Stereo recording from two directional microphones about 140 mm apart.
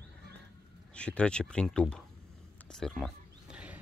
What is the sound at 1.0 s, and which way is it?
Speech, 10° left (ahead or behind).